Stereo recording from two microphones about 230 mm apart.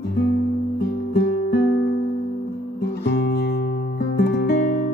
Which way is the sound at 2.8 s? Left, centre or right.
Left.